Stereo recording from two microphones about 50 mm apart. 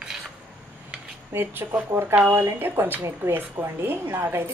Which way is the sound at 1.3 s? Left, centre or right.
Right.